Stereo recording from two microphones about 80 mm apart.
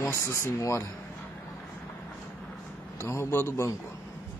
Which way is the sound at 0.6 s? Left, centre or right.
Left.